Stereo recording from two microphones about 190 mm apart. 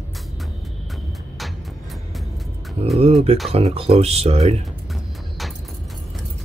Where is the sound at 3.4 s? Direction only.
30° right (ahead or behind).